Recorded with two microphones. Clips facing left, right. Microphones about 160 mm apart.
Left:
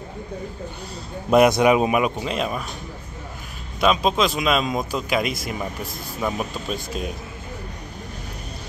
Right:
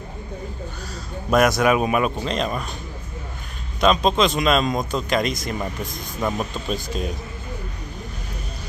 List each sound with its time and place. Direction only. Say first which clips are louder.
1.3 s a man's voice: left 2 dB; 20° left (ahead or behind)
3.8 s speech: right 1 dB; 5° left (ahead or behind)